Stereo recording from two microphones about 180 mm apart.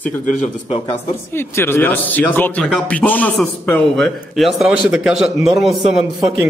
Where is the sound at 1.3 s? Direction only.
15° left (ahead or behind).